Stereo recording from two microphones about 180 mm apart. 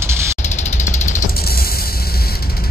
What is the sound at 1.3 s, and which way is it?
Music, 55° left (ahead or behind).